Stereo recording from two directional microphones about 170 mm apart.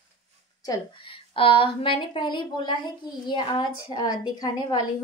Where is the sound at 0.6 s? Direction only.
25° left (ahead or behind).